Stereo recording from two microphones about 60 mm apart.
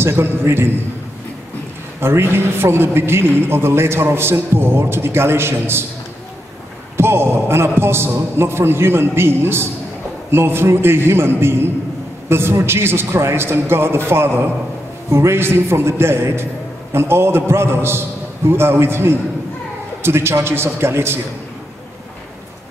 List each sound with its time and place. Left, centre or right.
0.0 s a man's voice: right
2.0 s a man's voice: right
7.0 s a man's voice: right